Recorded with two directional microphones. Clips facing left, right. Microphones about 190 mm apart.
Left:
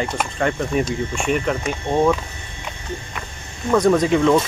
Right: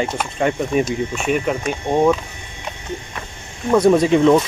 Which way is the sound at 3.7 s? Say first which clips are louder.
Right 2 dB; 10° right (ahead or behind).